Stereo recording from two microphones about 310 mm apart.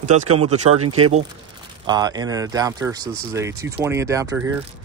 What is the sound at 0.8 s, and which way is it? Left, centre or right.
Speech, right.